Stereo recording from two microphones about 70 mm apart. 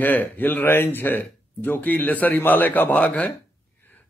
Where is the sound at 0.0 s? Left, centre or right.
Left.